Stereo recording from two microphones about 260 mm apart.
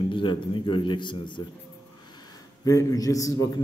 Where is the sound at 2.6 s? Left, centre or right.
Centre.